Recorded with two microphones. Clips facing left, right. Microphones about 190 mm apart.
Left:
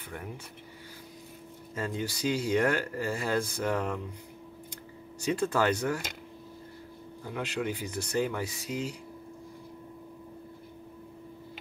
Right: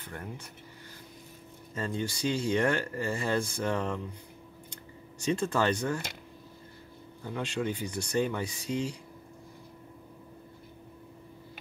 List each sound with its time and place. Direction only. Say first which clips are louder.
1.8 s speech: even; 5° left (ahead or behind)
5.2 s speech: left 1 dB; 10° left (ahead or behind)
7.3 s speech: even; 5° left (ahead or behind)
8.7 s speech: right 3 dB; 35° right (ahead or behind)